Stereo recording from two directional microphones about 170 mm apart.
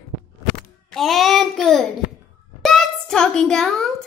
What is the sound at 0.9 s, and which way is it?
Child singing, centre (ahead or behind).